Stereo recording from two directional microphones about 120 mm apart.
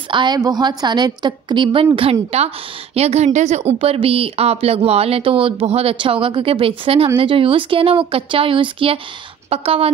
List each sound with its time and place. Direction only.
0.1 s a woman's voice: 40° right (ahead or behind)
2.0 s a woman's voice: 55° right (ahead or behind); by 3.7 s 70° right (ahead or behind)
3.7 s speech: 50° right (ahead or behind)